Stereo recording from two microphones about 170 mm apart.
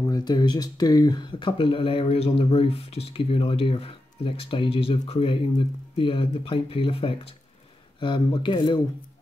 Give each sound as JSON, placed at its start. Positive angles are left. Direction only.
{"t": 0.0, "sound": "speech", "side_deg": 25}